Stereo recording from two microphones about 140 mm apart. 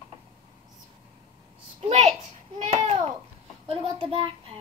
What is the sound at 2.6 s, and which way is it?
Babbling, 50° right (ahead or behind).